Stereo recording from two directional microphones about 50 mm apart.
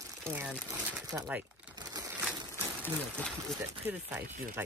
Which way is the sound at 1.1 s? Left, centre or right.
Right.